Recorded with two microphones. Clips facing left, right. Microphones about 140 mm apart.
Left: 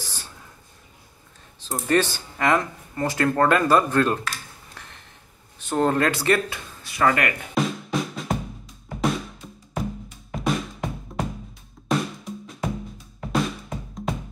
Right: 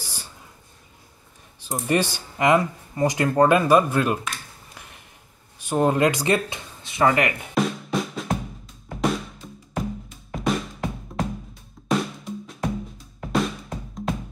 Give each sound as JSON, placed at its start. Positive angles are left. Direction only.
{"t": 0.0, "sound": "a sound", "side_deg": -10}
{"t": 1.7, "sound": "speech", "side_deg": -15}
{"t": 4.7, "sound": "a sound", "side_deg": -10}
{"t": 5.6, "sound": "speech", "side_deg": -10}
{"t": 7.5, "sound": "music", "side_deg": 0}
{"t": 8.8, "sound": "drum", "side_deg": 0}
{"t": 10.3, "sound": "music", "side_deg": 0}
{"t": 11.9, "sound": "drum", "side_deg": 0}